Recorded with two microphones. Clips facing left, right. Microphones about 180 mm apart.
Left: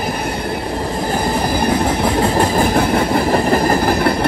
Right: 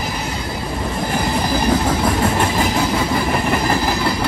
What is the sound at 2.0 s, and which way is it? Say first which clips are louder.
Vehicle: left 3 dB; 25° left (ahead or behind).